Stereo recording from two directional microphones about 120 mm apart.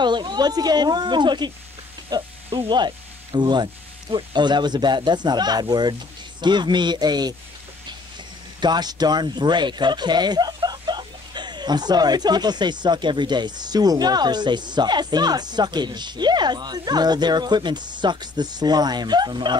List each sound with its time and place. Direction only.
0.0 s speech: 40° right (ahead or behind)
2.0 s sizzle: 35° right (ahead or behind)
3.3 s speech: 40° right (ahead or behind)
8.5 s speech: 35° right (ahead or behind)